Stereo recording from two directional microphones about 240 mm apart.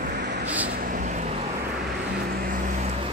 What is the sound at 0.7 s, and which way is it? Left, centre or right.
Vehicle, right.